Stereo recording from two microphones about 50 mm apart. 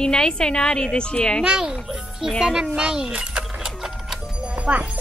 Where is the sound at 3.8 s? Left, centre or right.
Centre.